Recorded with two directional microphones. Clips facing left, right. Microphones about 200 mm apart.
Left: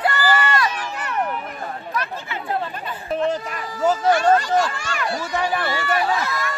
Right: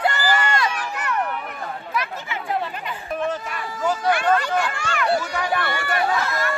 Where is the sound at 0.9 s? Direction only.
25° left (ahead or behind).